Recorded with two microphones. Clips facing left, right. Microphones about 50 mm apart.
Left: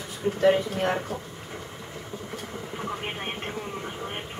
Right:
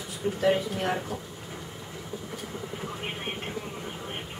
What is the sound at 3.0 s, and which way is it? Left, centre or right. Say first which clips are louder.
Vehicle: left 2 dB; centre.